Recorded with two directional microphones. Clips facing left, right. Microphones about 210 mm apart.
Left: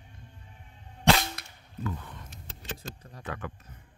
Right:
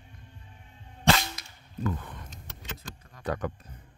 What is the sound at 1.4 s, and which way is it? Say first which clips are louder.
Cap gun: left 1 dB; 60° left (ahead or behind).